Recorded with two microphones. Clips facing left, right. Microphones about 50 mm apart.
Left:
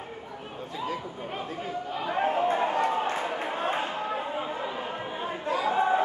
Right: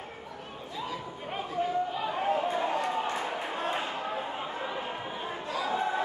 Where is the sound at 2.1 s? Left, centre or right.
Left.